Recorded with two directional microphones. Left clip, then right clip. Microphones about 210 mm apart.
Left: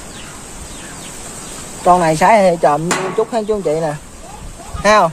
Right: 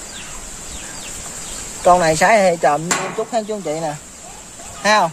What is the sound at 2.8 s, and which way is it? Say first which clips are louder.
Speech: left 4 dB; 25° left (ahead or behind).